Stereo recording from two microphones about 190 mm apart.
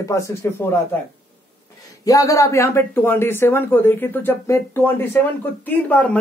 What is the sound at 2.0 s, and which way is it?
A man's voice, 15° left (ahead or behind).